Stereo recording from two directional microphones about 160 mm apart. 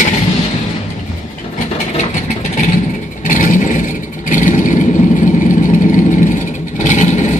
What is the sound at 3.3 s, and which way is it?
Vehicle, 55° left (ahead or behind).